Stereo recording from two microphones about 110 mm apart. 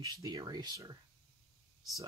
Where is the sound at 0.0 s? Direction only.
35° right (ahead or behind).